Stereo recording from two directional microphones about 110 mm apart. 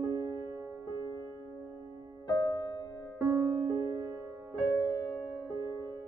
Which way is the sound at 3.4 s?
35° right (ahead or behind).